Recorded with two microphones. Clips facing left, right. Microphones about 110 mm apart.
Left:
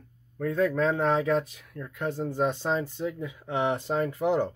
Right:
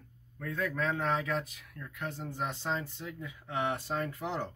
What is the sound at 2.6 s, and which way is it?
Speech, 25° left (ahead or behind).